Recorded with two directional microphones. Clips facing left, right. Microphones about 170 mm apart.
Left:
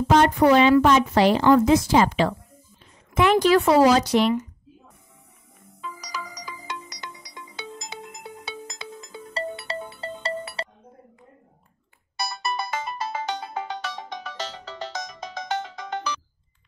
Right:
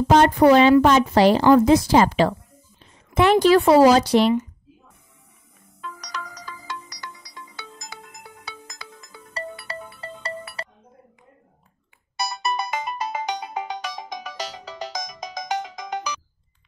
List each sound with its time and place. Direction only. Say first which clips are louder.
0.1 s a woman's voice: right 3 dB; 35° right (ahead or behind)
5.8 s music: even; 5° left (ahead or behind); by 10.7 s 25° left (ahead or behind)
12.2 s ringtone: right 3 dB; 20° right (ahead or behind)